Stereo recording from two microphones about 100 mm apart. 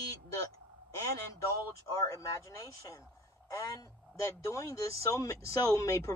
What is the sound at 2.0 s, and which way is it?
Speech, 35° left (ahead or behind).